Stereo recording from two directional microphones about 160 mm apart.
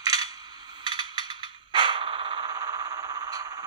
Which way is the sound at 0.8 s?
25° right (ahead or behind).